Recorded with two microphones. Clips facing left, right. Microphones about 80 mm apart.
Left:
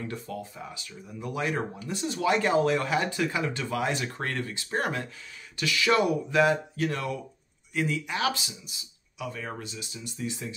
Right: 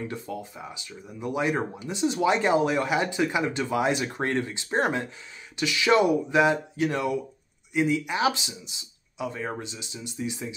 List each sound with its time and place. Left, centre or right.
0.1 s speech: centre